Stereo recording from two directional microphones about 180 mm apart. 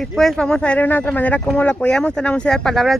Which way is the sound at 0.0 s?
Centre (ahead or behind).